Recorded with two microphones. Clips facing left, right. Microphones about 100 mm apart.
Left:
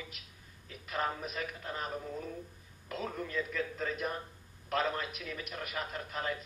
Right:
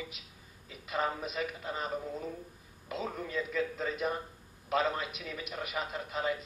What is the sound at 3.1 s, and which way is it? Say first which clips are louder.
A man's voice: left 1 dB; 10° right (ahead or behind).